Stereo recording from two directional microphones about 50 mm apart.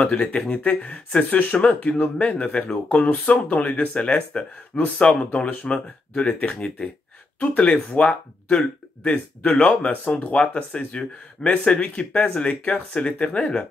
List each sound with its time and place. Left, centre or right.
0.0 s speech: left